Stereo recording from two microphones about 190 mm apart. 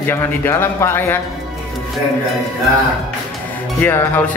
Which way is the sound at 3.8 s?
10° left (ahead or behind).